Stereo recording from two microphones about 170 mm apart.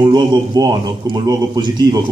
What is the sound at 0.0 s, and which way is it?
A man's voice, 25° right (ahead or behind).